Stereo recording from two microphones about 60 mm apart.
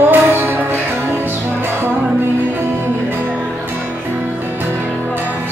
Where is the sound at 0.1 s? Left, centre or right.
Right.